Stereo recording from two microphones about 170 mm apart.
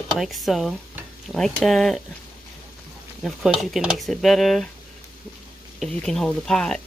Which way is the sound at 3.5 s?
Centre (ahead or behind).